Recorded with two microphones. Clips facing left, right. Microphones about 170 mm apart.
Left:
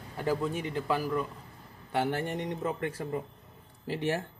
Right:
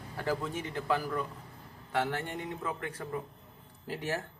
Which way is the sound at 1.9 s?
25° left (ahead or behind).